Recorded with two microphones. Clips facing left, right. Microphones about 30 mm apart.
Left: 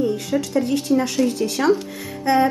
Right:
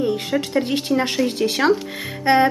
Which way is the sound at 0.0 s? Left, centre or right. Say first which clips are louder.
Even; right.